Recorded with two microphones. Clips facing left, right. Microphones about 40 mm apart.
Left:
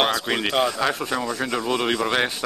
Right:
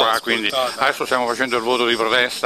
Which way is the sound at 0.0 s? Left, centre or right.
Centre.